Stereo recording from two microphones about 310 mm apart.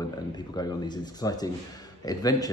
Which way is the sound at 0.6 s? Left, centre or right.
Centre.